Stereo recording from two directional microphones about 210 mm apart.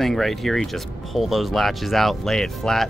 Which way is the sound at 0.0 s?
Centre (ahead or behind).